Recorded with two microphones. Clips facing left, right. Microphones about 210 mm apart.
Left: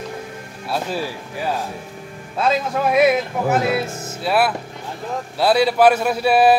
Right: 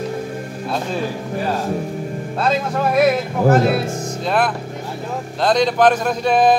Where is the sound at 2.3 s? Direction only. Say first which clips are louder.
Even; centre (ahead or behind).